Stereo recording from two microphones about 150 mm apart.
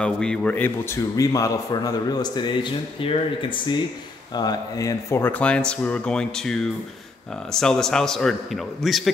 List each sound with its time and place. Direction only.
0.0 s a man's voice: 5° left (ahead or behind)
7.5 s speech: 5° left (ahead or behind)